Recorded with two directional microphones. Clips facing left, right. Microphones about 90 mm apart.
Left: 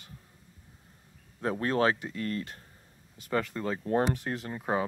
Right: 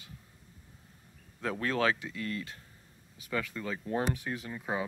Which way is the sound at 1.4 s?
30° left (ahead or behind).